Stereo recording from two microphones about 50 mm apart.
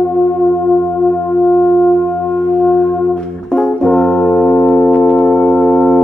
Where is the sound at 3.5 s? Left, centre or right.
Centre; by 5.1 s left.